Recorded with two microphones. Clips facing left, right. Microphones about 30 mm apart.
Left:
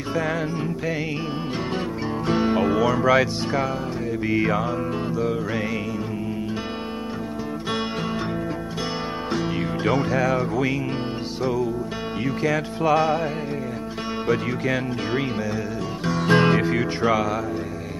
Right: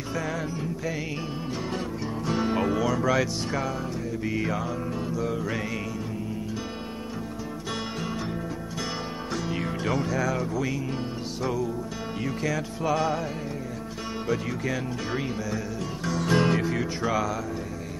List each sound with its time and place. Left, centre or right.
0.1 s music: left
2.2 s music: left
2.5 s music: centre
2.8 s speech: left
4.3 s music: left
5.1 s speech: left
9.8 s music: left
12.4 s music: left
14.2 s music: left